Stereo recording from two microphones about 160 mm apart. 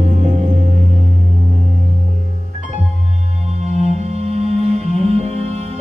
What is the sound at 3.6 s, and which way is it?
Music, 45° right (ahead or behind).